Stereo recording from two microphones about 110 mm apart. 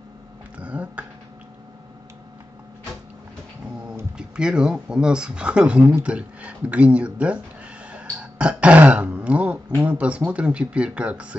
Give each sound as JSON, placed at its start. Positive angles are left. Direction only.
{"t": 0.6, "sound": "a sound", "side_deg": -10}
{"t": 4.2, "sound": "speech", "side_deg": -5}
{"t": 7.9, "sound": "throat clearing", "side_deg": -10}